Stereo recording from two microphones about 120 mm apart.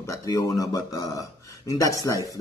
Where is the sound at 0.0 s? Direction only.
30° left (ahead or behind).